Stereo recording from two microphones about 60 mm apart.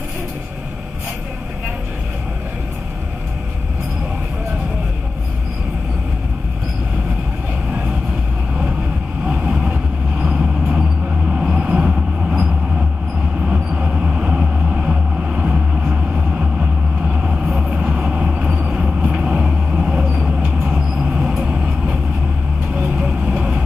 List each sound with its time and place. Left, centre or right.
9.2 s vehicle: right
11.5 s train: centre
13.4 s vehicle: centre
17.5 s vehicle: centre
17.7 s vehicle: right
22.9 s vehicle: centre